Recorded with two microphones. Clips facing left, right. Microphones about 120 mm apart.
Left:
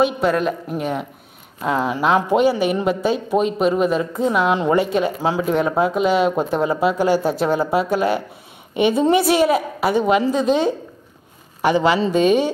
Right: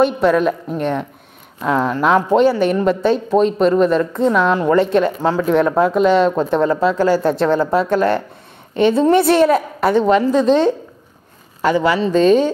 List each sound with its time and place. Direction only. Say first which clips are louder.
0.0 s a woman's voice: right 4 dB; centre (ahead or behind)
4.6 s speech: right 3 dB; 15° left (ahead or behind)
4.8 s speech: right 4 dB; 5° left (ahead or behind)
11.6 s speech: right 1 dB; 20° left (ahead or behind)